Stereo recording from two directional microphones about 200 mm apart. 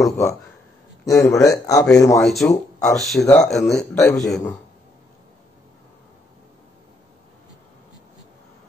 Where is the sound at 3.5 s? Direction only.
Centre (ahead or behind).